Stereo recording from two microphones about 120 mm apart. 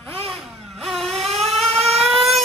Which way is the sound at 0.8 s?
Centre (ahead or behind).